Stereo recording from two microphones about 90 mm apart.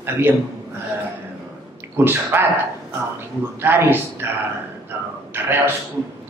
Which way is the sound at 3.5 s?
25° right (ahead or behind).